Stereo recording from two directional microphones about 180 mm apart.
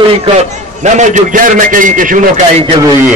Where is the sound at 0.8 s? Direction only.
45° right (ahead or behind).